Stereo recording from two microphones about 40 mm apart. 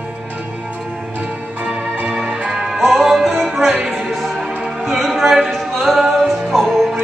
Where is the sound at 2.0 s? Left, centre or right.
Centre.